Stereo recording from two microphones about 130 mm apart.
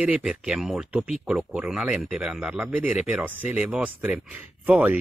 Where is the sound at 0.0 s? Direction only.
10° right (ahead or behind).